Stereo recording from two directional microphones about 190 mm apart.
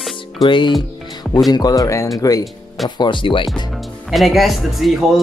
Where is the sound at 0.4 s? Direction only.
25° left (ahead or behind).